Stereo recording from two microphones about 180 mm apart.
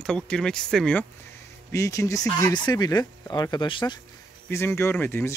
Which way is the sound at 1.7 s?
20° left (ahead or behind).